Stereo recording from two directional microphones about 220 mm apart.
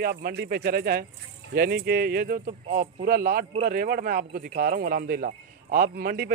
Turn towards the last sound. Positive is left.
turn(degrees=-45)  # may be behind; listen again after turning